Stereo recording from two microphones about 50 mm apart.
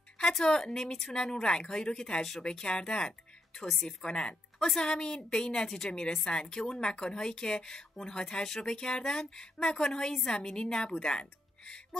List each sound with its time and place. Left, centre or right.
0.2 s a woman's voice: centre